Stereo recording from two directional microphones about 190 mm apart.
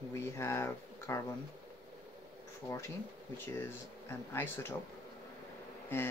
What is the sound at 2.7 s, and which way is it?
Speech, 15° left (ahead or behind).